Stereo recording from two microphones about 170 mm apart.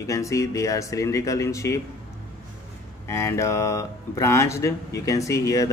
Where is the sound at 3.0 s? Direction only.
15° left (ahead or behind).